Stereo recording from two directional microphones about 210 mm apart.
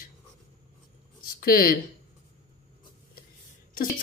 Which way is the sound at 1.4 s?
45° left (ahead or behind).